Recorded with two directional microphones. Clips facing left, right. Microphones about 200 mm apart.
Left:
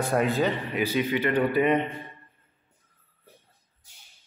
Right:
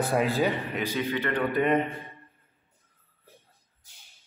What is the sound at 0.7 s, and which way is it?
A man's voice, 15° left (ahead or behind).